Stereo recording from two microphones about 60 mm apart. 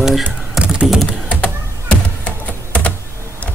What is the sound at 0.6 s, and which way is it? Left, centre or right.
Computer keyboard, centre.